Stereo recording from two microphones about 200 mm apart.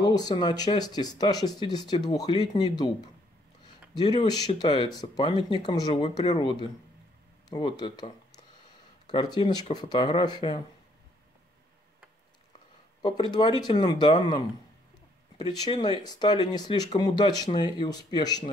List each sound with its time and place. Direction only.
0.0 s speech: 20° left (ahead or behind)
3.9 s speech: 20° left (ahead or behind)
13.0 s speech: 25° left (ahead or behind)